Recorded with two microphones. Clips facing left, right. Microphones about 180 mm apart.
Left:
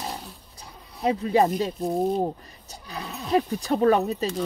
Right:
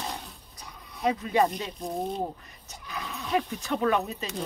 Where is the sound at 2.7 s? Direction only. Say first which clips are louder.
Left 2 dB; 35° left (ahead or behind).